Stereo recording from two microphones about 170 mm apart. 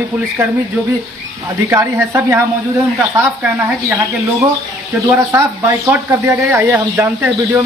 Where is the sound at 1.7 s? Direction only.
15° right (ahead or behind).